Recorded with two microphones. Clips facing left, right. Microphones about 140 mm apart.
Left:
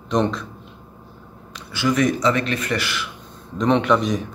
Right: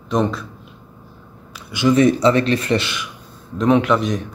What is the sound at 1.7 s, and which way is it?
Speech, 20° right (ahead or behind).